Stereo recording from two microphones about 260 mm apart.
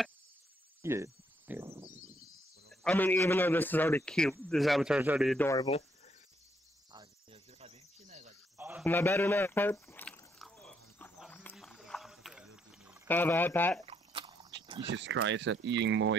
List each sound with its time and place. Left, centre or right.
0.8 s insect: centre
2.7 s speech: centre
5.5 s speech: centre
7.6 s cricket: right
8.5 s cricket: centre
8.8 s liquid: centre
13.1 s speech: centre
13.8 s a sound: centre
14.9 s speech: right